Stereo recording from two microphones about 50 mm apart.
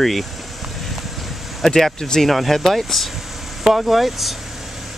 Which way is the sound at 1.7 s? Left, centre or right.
Centre.